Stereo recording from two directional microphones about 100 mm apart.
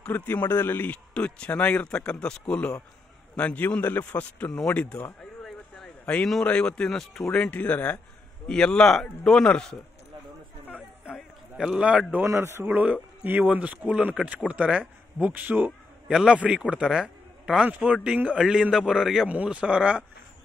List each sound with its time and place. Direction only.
0.0 s speech: 20° left (ahead or behind)
5.2 s a sound: 5° left (ahead or behind)
6.1 s speech: 5° left (ahead or behind)
11.1 s a sound: 5° right (ahead or behind)
12.3 s a man's voice: 30° right (ahead or behind)
12.6 s a man's voice: 15° right (ahead or behind)